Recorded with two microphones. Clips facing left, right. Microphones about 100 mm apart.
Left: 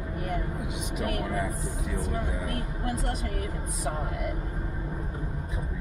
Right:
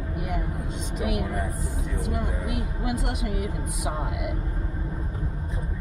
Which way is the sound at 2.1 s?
15° right (ahead or behind).